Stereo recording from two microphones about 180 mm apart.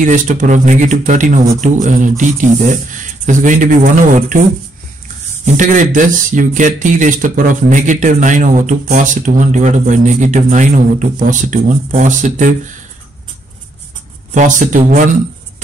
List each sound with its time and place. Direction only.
0.0 s speech: 45° right (ahead or behind)
5.4 s speech: 45° right (ahead or behind)
14.3 s speech: 45° right (ahead or behind)